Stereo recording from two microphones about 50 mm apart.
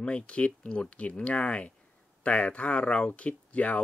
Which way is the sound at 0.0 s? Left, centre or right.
Left.